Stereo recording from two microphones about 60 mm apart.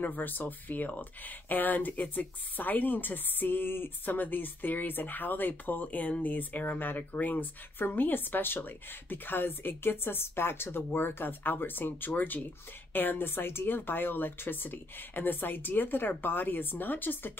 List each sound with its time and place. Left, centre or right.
0.0 s speech: left